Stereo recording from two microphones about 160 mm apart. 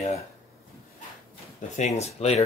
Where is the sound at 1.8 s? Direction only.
45° left (ahead or behind).